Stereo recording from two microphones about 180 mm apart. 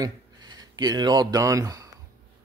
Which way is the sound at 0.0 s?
20° right (ahead or behind).